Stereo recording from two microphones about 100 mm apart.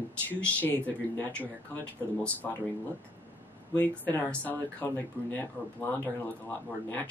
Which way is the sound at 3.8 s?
15° left (ahead or behind).